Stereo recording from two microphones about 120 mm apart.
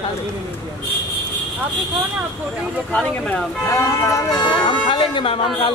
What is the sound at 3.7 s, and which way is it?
Speech, 25° left (ahead or behind).